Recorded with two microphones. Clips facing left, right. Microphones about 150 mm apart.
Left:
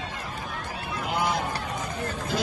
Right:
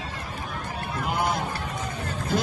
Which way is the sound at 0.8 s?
55° right (ahead or behind).